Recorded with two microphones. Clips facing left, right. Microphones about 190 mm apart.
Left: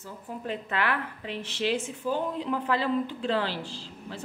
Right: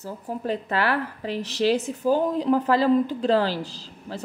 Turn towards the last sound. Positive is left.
turn(degrees=-40)  # may be behind; listen again after turning